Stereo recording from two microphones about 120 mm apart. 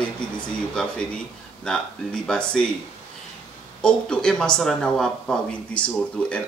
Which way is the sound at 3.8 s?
5° left (ahead or behind).